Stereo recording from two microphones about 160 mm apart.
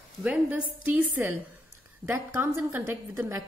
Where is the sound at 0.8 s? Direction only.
10° right (ahead or behind).